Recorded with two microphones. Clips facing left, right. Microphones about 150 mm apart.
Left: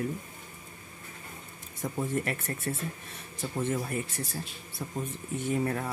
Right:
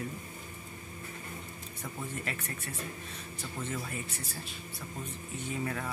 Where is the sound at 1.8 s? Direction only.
45° left (ahead or behind).